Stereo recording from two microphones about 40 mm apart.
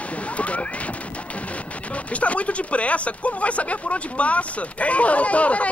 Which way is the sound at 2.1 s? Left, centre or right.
Left.